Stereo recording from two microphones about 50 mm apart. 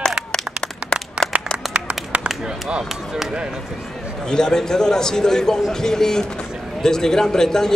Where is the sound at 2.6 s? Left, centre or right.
Centre.